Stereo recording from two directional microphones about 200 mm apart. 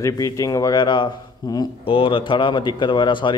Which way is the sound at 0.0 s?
15° left (ahead or behind).